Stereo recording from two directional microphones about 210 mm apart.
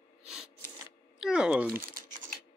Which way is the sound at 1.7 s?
45° right (ahead or behind).